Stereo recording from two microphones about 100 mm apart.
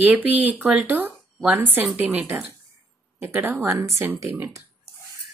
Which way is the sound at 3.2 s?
20° right (ahead or behind).